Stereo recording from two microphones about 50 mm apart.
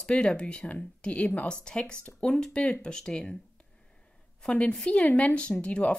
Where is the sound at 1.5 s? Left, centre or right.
Centre.